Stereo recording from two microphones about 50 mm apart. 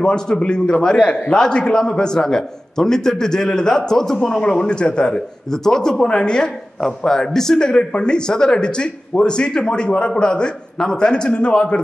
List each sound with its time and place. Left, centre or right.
0.0 s a man's voice: centre